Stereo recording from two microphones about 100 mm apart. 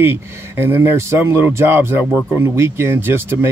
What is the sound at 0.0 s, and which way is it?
Speech, 25° right (ahead or behind).